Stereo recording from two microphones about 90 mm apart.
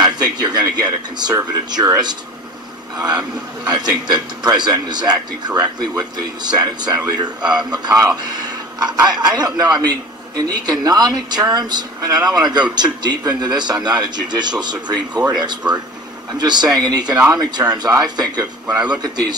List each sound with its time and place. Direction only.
0.0 s a man's voice: 50° right (ahead or behind)